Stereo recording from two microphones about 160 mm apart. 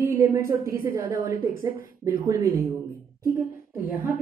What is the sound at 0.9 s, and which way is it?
Speech, 60° left (ahead or behind).